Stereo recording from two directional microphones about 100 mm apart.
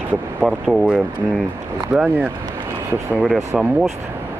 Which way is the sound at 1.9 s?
10° right (ahead or behind).